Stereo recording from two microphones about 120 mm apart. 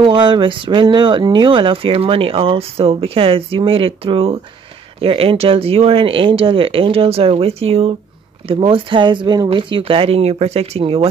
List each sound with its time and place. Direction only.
0.0 s speech: 45° right (ahead or behind)